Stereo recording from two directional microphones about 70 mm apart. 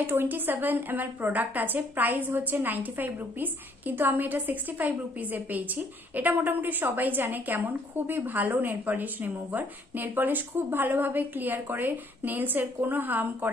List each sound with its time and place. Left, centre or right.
0.0 s a woman's voice: right